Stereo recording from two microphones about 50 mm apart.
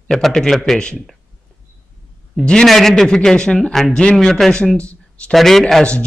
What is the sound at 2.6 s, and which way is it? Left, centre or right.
Speech, centre.